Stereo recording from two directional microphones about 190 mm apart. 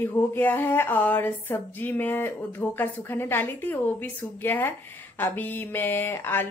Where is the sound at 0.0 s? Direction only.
10° left (ahead or behind).